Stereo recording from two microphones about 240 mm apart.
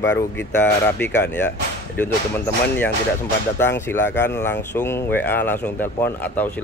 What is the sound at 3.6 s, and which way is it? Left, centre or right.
Speech, centre.